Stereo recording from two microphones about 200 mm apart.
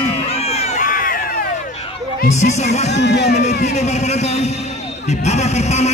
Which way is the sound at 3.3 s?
35° left (ahead or behind).